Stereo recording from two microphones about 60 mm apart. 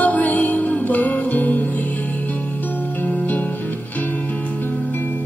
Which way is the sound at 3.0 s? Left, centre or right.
Left.